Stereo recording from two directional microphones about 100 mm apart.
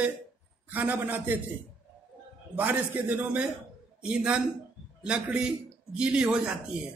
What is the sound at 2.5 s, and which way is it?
Speech, 15° right (ahead or behind).